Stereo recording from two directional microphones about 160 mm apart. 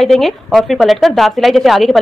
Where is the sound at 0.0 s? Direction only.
Centre (ahead or behind).